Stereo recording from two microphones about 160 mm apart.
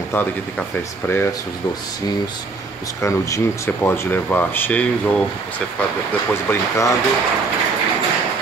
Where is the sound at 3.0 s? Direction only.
20° left (ahead or behind).